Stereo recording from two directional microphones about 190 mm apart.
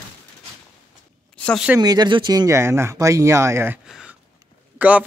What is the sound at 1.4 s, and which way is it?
Speech, 5° left (ahead or behind).